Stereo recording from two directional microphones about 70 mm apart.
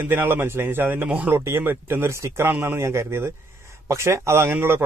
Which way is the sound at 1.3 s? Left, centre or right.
Right.